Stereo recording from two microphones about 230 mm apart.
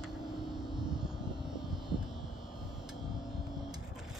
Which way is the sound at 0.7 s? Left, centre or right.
Centre.